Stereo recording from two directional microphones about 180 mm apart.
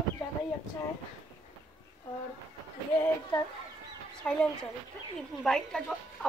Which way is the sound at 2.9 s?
10° left (ahead or behind).